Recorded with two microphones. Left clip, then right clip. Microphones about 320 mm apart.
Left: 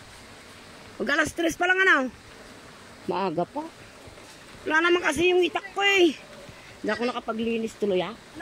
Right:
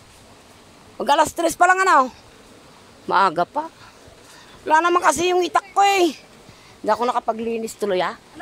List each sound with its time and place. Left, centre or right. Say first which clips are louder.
1.0 s speech: right 7 dB; centre
3.3 s speech: right 8 dB; right
4.6 s speech: right 6 dB; centre
5.2 s speech: right 2 dB; right
5.5 s speech: right 7 dB; centre
7.3 s speech: right 3 dB; right